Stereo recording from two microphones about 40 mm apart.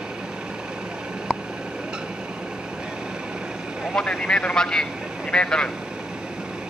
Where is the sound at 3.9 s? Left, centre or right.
Left.